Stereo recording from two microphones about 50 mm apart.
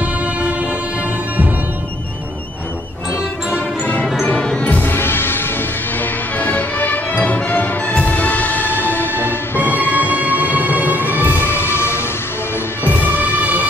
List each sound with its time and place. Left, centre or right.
0.0 s music: right
3.5 s music: left
4.2 s music: left
4.8 s music: left
9.7 s music: right
11.4 s music: left